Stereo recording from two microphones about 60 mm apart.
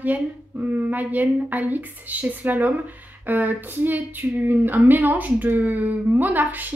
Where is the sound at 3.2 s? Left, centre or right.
Right.